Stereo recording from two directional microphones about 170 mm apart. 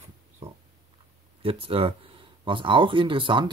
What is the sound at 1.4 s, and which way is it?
Speech, 35° right (ahead or behind).